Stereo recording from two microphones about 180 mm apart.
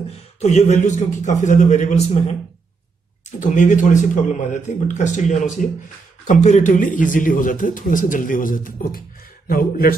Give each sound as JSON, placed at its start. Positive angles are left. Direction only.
{"t": 0.4, "sound": "a man's voice", "side_deg": 35}